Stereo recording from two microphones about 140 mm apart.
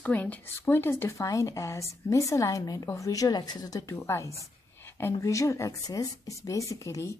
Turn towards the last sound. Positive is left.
turn(degrees=20)  # may be behind; listen again after turning